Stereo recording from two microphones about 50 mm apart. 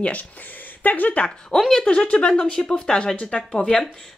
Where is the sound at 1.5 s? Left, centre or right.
Centre.